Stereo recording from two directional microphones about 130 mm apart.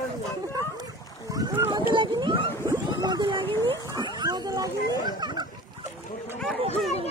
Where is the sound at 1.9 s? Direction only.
35° right (ahead or behind).